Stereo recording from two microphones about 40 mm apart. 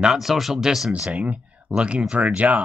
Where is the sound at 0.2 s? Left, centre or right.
Centre.